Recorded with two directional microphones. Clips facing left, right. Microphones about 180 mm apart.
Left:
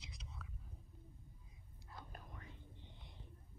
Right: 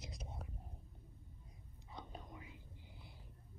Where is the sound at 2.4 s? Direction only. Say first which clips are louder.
Right 1 dB; 5° right (ahead or behind).